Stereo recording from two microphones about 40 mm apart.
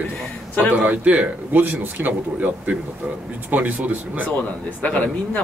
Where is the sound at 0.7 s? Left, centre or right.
Right.